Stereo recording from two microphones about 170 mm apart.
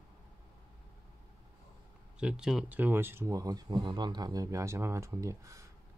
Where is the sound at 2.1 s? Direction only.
5° right (ahead or behind).